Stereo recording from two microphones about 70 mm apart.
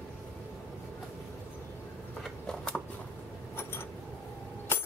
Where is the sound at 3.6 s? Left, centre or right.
Left.